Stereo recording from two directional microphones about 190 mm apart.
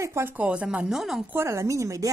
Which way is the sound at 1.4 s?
15° right (ahead or behind).